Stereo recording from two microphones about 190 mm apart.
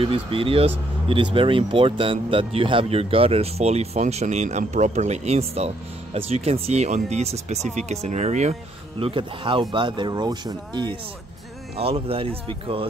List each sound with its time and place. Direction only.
0.0 s speech: 30° right (ahead or behind)
9.0 s speech: 25° right (ahead or behind)